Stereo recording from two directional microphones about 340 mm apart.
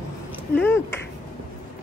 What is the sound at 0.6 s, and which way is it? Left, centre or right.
Finger snapping, centre.